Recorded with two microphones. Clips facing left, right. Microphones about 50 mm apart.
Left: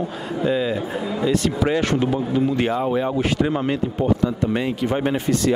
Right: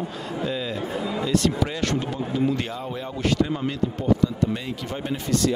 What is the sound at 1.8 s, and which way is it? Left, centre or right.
Speech, centre.